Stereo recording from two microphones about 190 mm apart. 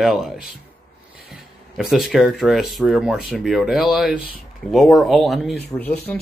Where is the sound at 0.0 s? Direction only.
Centre (ahead or behind).